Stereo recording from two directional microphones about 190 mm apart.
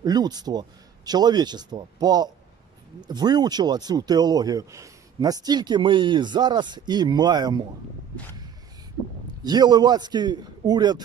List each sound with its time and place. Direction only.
0.0 s speech: 20° right (ahead or behind)
9.4 s speech: 20° right (ahead or behind)